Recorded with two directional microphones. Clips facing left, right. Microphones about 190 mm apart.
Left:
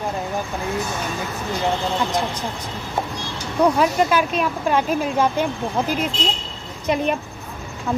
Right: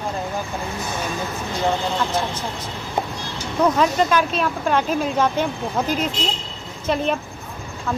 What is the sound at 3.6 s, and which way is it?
A woman's voice, 10° left (ahead or behind).